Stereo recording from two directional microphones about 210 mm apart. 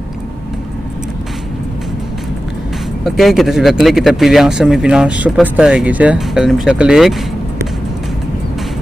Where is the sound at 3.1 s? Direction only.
Centre (ahead or behind).